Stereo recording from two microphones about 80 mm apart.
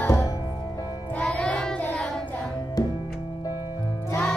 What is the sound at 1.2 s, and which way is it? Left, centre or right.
Music, centre.